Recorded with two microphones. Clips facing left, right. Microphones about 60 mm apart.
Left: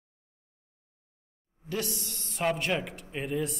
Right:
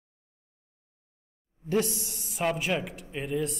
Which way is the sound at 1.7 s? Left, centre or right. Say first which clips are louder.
Right 6 dB; right.